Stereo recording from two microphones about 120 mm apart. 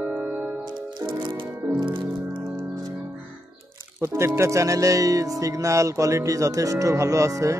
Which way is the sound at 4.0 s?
20° right (ahead or behind).